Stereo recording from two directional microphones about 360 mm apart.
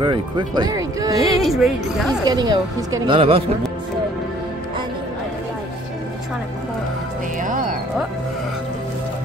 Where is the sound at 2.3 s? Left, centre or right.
Centre.